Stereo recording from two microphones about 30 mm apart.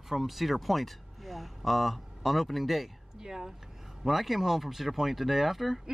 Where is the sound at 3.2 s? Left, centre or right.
Centre.